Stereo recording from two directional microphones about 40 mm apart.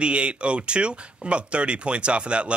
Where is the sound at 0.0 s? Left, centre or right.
Right.